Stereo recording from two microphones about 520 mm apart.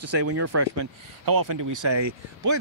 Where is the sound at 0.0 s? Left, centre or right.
Right.